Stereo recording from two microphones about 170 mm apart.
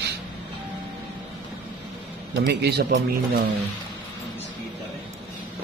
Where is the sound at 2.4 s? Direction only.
70° right (ahead or behind).